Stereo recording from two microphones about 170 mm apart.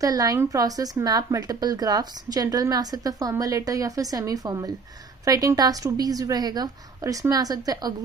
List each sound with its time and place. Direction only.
0.0 s speech: 20° right (ahead or behind)